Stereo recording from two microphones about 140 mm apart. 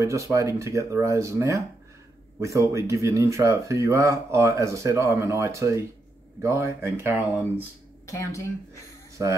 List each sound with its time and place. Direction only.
0.0 s speech: 20° right (ahead or behind)
8.1 s speech: 20° left (ahead or behind)